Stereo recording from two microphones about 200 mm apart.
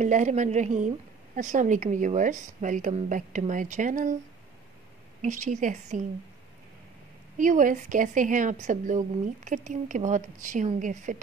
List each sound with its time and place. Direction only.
0.0 s a woman's voice: 35° right (ahead or behind)
5.2 s a woman's voice: 35° right (ahead or behind)
7.3 s a woman's voice: 40° right (ahead or behind)